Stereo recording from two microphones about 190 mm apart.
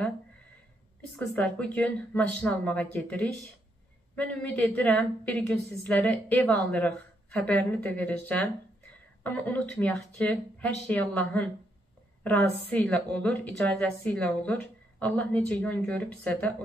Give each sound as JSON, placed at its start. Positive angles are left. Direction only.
{"t": 1.1, "sound": "a woman's voice", "side_deg": 5}